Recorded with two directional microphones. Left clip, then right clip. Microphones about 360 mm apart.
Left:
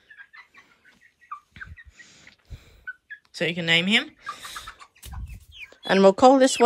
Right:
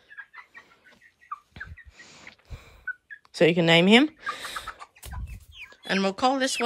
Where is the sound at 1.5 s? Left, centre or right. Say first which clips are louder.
Even; centre.